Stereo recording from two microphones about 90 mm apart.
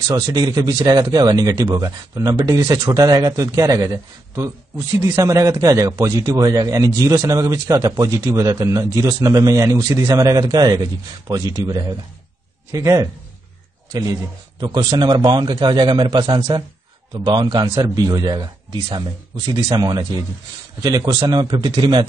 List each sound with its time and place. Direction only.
0.1 s a man's voice: 45° right (ahead or behind)
14.6 s a man's voice: 55° right (ahead or behind)
17.7 s speech: 40° right (ahead or behind)